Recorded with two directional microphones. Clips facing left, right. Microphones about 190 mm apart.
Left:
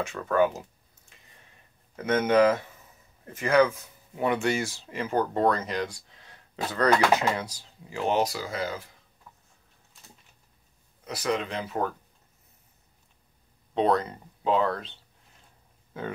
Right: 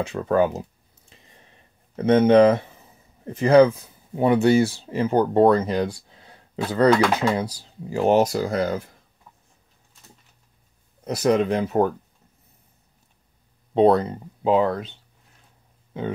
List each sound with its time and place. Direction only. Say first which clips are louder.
0.0 s speech: right 4 dB; 30° right (ahead or behind)
2.0 s speech: right 7 dB; 30° right (ahead or behind); by 8.9 s 50° right (ahead or behind)
11.1 s speech: right 9 dB; 45° right (ahead or behind)
13.7 s speech: right 7 dB; 30° right (ahead or behind)
14.5 s speech: right 5 dB; 15° right (ahead or behind)